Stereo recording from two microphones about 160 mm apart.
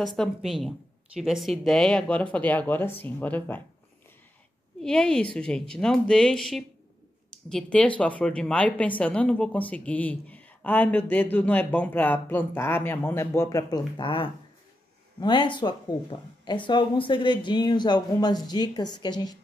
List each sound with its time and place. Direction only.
0.0 s speech: centre (ahead or behind)
4.8 s speech: 5° left (ahead or behind); by 19.3 s 25° left (ahead or behind)